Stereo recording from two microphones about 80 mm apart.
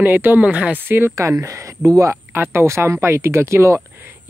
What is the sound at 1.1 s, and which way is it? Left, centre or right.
Speech, right.